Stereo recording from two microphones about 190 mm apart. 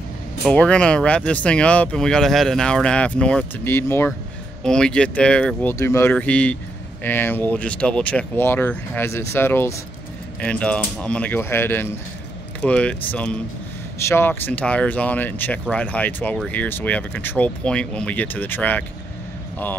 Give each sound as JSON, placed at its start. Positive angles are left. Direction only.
{"t": 0.5, "sound": "speech", "side_deg": 5}